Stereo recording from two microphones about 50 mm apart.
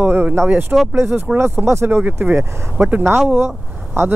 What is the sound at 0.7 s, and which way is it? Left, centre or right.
Speech, right.